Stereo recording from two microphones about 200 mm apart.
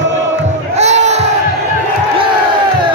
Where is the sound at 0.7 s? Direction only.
35° right (ahead or behind).